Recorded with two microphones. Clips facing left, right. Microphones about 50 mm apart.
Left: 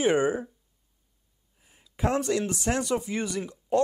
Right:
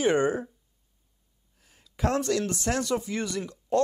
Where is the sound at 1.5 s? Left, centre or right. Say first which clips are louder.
Even; centre.